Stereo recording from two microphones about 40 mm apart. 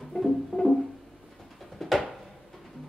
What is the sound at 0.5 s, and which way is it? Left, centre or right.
Music, left.